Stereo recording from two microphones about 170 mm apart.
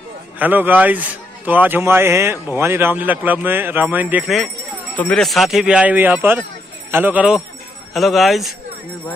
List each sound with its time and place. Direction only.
0.4 s a man's voice: 10° right (ahead or behind)
4.9 s a man's voice: 5° left (ahead or behind)